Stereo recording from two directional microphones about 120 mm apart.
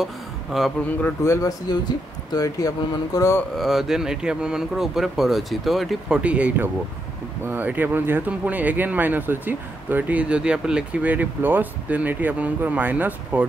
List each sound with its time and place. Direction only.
0.0 s a sound: centre (ahead or behind)
1.0 s speech: 25° left (ahead or behind)
1.7 s speech: 35° left (ahead or behind)
3.5 s speech: centre (ahead or behind)